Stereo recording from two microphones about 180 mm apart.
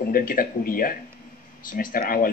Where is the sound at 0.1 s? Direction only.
50° left (ahead or behind).